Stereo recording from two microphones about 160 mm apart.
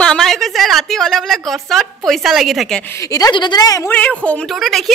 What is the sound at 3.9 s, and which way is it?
A woman's voice, 10° left (ahead or behind).